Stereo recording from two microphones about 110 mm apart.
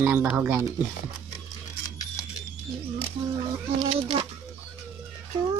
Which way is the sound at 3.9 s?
60° right (ahead or behind).